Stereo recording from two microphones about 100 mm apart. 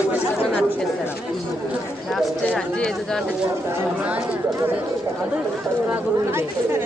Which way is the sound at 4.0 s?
15° right (ahead or behind).